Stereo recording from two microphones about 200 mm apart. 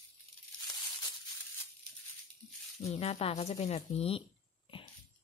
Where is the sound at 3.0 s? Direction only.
30° left (ahead or behind).